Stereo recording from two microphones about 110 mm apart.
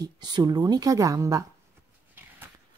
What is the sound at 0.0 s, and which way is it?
A woman's voice, 40° right (ahead or behind).